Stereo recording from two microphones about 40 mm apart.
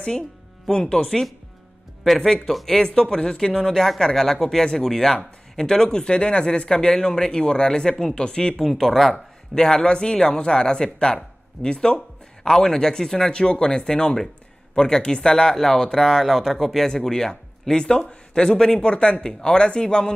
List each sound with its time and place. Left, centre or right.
0.7 s speech: centre
2.5 s speech: centre
2.8 s speech: centre
5.9 s speech: left
8.6 s speech: centre
9.6 s speech: centre
16.3 s speech: centre
16.8 s speech: centre